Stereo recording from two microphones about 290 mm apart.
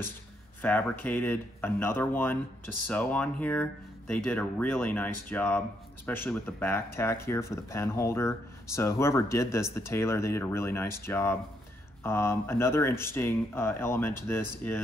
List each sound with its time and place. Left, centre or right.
0.6 s speech: centre